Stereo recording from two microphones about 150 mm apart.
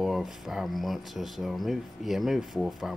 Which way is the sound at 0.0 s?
Centre (ahead or behind).